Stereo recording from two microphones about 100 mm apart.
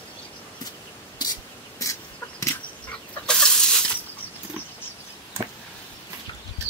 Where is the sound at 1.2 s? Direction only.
40° left (ahead or behind).